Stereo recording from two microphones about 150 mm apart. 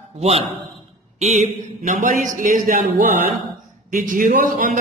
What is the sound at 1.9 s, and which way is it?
A man's voice, 60° right (ahead or behind).